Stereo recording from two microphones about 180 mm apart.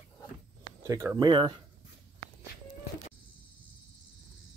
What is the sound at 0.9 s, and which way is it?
Speech, 15° right (ahead or behind).